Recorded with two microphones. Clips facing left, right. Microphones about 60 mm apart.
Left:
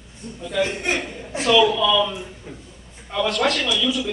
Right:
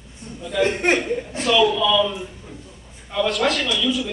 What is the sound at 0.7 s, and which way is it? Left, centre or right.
Speech, right.